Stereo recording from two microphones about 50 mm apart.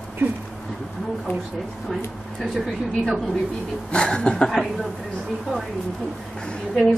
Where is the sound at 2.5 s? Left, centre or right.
Centre.